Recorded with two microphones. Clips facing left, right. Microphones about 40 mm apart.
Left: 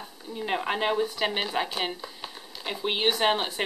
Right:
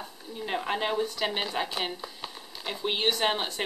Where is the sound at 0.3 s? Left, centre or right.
Centre.